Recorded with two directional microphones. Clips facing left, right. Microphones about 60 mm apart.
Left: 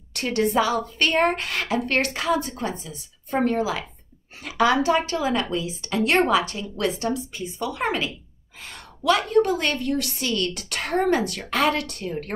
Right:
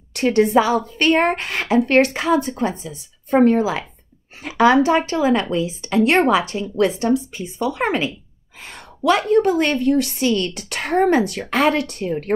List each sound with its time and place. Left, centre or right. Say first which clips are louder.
0.1 s a woman's voice: right 7 dB; right